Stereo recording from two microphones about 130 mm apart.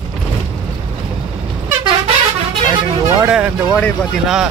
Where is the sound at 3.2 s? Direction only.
10° right (ahead or behind).